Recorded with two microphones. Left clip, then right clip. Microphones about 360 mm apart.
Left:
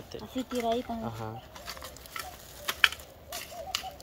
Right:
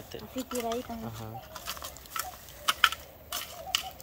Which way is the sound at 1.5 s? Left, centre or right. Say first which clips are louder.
Right 2 dB; right.